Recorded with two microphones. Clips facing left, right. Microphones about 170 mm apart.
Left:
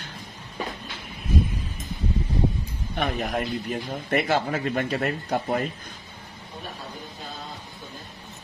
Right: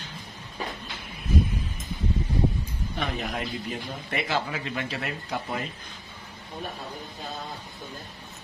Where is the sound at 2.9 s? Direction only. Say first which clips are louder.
Left 5 dB; 50° left (ahead or behind).